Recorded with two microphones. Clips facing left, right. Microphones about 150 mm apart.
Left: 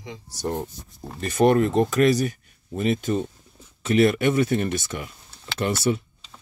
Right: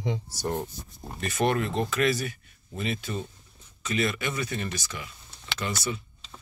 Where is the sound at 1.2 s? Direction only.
40° left (ahead or behind).